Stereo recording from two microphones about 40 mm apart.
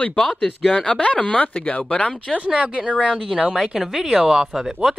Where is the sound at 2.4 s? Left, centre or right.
Right.